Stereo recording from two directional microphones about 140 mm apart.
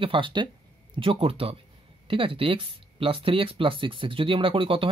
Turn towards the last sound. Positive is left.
turn(degrees=-40)  # may be behind; listen again after turning